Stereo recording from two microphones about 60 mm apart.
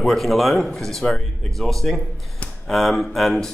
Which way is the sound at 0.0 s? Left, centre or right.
Centre.